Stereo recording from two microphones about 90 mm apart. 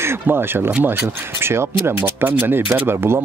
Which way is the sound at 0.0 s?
25° right (ahead or behind).